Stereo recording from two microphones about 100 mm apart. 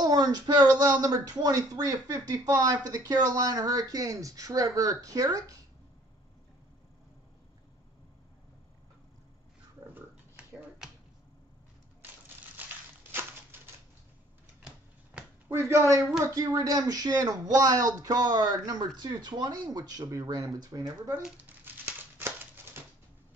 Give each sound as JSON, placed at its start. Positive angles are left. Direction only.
{"t": 0.0, "sound": "speech", "side_deg": -40}
{"t": 10.8, "sound": "finger snapping", "side_deg": -5}
{"t": 15.5, "sound": "speech", "side_deg": -30}
{"t": 21.2, "sound": "crumpling", "side_deg": -15}